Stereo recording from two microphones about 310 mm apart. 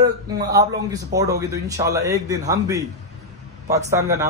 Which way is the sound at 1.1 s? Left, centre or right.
Centre.